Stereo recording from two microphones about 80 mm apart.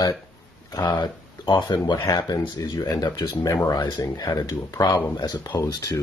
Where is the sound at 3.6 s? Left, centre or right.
Left.